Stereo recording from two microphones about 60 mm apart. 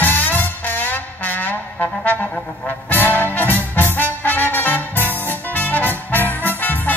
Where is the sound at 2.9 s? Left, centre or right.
Left.